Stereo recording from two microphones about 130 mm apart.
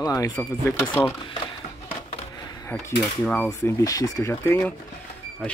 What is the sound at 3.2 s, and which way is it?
Speech, 5° left (ahead or behind).